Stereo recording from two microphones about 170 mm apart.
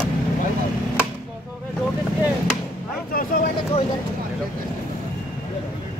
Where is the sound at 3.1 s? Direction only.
55° left (ahead or behind).